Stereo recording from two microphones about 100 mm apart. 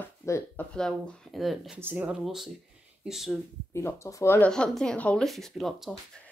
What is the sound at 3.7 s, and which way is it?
Speech, 30° left (ahead or behind).